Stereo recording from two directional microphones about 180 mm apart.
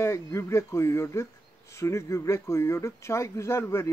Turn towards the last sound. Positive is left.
turn(degrees=15)  # may be behind; listen again after turning